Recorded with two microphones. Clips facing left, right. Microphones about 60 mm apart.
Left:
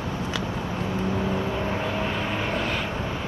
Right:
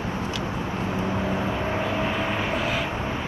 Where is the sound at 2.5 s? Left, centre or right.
Centre.